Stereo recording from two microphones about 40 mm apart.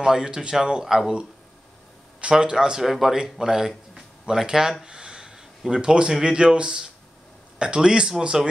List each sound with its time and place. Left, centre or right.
0.0 s speech: centre
2.3 s speech: centre
2.8 s speech: centre
4.8 s a sound: centre
5.7 s speech: right